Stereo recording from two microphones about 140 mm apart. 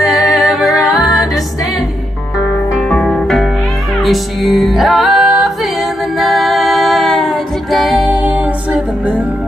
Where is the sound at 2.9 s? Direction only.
5° left (ahead or behind).